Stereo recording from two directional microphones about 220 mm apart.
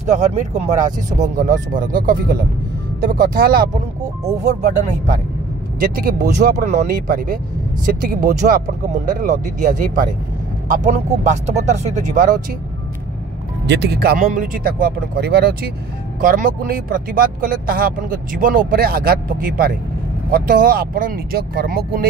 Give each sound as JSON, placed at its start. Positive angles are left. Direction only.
{"t": 0.1, "sound": "speech", "side_deg": -30}
{"t": 13.7, "sound": "speech", "side_deg": -50}